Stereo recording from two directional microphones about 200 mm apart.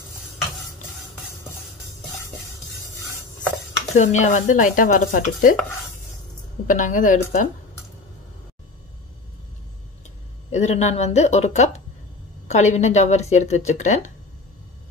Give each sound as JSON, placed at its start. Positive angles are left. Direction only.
{"t": 3.9, "sound": "stir", "side_deg": 35}
{"t": 6.7, "sound": "stir", "side_deg": 40}
{"t": 10.5, "sound": "stir", "side_deg": 35}